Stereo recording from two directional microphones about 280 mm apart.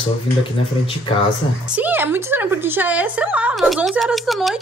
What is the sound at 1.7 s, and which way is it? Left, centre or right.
A woman's voice, centre.